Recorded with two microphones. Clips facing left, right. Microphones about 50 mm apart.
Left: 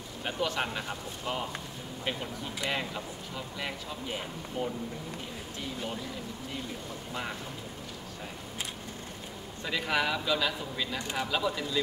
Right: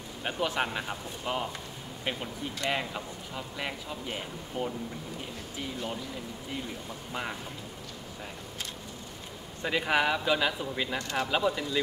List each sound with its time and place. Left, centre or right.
0.2 s speech: centre
2.7 s speech: centre
9.6 s a man's voice: right
11.0 s speech: centre
11.2 s a man's voice: centre